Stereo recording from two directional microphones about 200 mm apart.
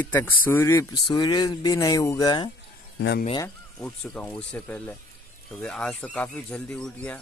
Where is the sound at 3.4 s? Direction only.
5° left (ahead or behind).